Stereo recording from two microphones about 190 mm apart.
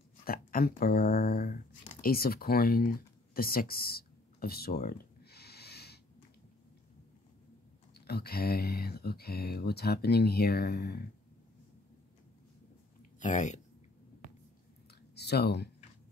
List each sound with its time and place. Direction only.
0.2 s speech: 50° left (ahead or behind)
2.0 s a sound: 50° left (ahead or behind)
7.9 s speech: 55° left (ahead or behind)
13.2 s speech: 40° left (ahead or behind)
15.1 s speech: 60° left (ahead or behind)